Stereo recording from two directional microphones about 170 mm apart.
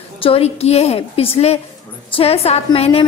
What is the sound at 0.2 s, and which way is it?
A woman's voice, 35° left (ahead or behind).